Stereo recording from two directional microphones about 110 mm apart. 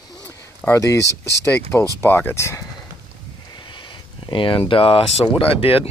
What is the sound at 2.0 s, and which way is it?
Speech, 20° left (ahead or behind).